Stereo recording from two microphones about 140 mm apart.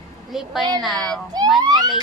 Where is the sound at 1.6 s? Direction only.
30° right (ahead or behind).